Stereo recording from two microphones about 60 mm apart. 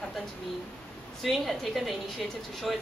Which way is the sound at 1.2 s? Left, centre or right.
Centre.